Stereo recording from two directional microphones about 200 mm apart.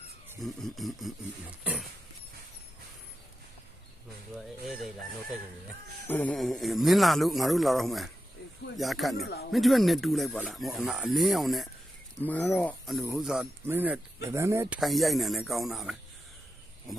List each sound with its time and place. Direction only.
0.4 s speech: centre (ahead or behind)
4.4 s chicken: centre (ahead or behind)
6.0 s speech: 5° left (ahead or behind)
9.1 s speech: 55° left (ahead or behind)
9.5 s speech: centre (ahead or behind)
14.8 s speech: centre (ahead or behind)